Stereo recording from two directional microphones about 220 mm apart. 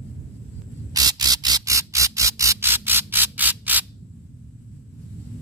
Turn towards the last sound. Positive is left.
turn(degrees=-10)  # may be behind; listen again after turning